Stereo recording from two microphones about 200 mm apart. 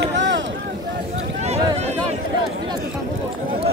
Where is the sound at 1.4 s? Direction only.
35° right (ahead or behind).